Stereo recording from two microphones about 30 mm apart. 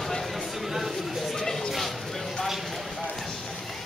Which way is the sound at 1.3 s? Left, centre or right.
Centre.